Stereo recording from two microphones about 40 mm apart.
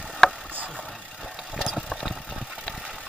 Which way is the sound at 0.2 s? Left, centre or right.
Centre.